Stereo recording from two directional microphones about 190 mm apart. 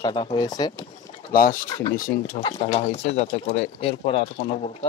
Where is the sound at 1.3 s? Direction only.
45° left (ahead or behind).